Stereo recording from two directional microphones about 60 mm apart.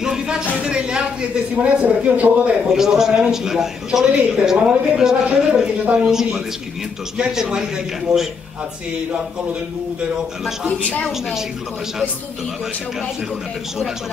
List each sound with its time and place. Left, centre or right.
0.0 s a sound: centre
0.7 s a woman's voice: centre
2.7 s a woman's voice: centre
10.8 s a woman's voice: left
11.1 s a woman's voice: centre